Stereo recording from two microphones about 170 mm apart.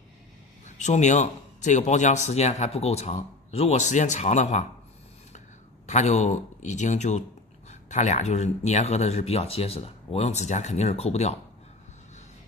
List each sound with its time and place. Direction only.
0.7 s a man's voice: 45° left (ahead or behind)
5.9 s a man's voice: 45° left (ahead or behind)